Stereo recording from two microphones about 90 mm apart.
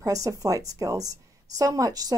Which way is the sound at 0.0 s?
40° right (ahead or behind).